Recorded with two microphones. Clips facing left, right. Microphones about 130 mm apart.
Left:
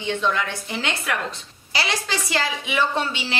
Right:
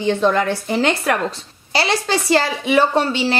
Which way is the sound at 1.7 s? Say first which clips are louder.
Right 7 dB; 30° right (ahead or behind).